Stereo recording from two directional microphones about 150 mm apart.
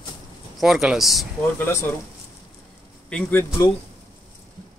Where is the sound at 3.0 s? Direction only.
5° left (ahead or behind).